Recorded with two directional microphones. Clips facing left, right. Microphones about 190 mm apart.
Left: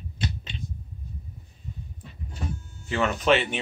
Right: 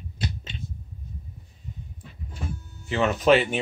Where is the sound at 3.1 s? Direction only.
40° right (ahead or behind).